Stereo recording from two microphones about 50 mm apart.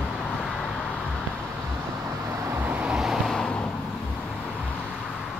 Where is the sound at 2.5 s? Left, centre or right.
Right.